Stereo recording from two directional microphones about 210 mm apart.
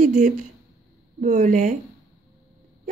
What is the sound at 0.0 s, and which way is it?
A woman's voice, 35° right (ahead or behind).